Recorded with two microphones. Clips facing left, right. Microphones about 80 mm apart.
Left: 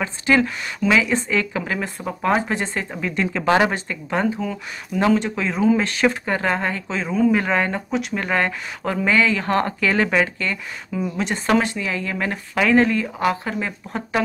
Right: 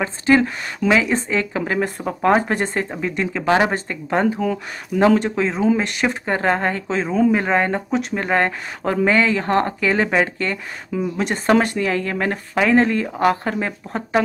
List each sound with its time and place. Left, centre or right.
0.0 s speech: right
2.9 s speech: centre
3.7 s speech: right
4.9 s speech: left
5.3 s speech: right
5.8 s speech: centre
6.3 s speech: right
7.2 s speech: right
10.1 s speech: right